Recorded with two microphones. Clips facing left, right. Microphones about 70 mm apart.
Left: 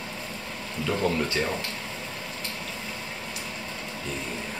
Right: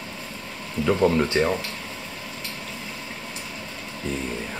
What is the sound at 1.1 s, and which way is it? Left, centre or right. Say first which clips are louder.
Speech: right 6 dB; right.